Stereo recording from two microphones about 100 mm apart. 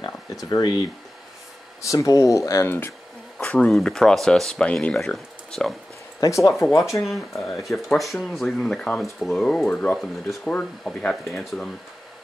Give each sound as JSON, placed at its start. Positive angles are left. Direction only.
{"t": 0.0, "sound": "speech", "side_deg": 40}
{"t": 1.8, "sound": "speech", "side_deg": 30}
{"t": 3.3, "sound": "speech", "side_deg": 10}
{"t": 6.2, "sound": "speech", "side_deg": 30}
{"t": 7.6, "sound": "speech", "side_deg": 0}
{"t": 9.9, "sound": "speech", "side_deg": 0}
{"t": 10.5, "sound": "speech", "side_deg": 10}